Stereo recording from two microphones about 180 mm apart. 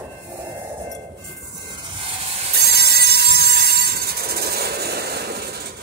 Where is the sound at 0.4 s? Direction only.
15° right (ahead or behind).